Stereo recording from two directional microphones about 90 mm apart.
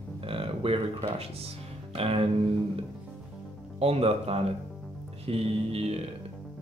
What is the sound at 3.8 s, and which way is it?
Speech, 90° right.